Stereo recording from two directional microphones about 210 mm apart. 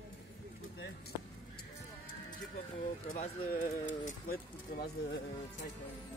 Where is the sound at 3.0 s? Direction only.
40° left (ahead or behind).